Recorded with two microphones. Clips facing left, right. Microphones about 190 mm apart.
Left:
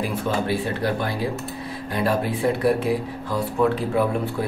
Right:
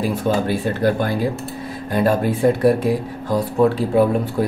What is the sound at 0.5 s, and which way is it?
A man's voice, 45° right (ahead or behind).